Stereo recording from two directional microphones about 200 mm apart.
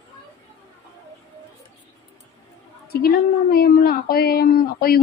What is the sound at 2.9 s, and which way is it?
A woman's voice, 50° left (ahead or behind).